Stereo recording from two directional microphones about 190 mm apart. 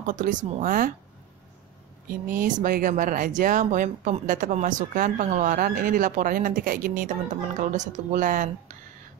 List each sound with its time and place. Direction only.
0.0 s speech: 40° right (ahead or behind)
2.0 s speech: 50° right (ahead or behind)